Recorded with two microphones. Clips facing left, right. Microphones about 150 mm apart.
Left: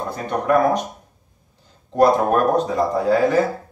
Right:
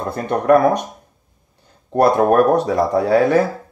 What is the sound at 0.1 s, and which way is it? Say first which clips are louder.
Speech: right 5 dB; 60° right (ahead or behind).